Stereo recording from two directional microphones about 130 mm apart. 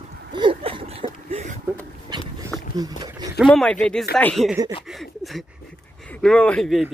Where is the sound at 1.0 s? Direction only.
65° right (ahead or behind).